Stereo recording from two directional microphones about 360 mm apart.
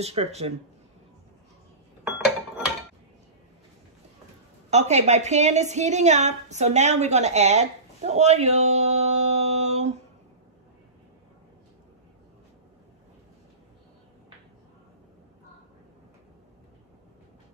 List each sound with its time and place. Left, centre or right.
0.0 s speech: centre
4.6 s a woman's voice: centre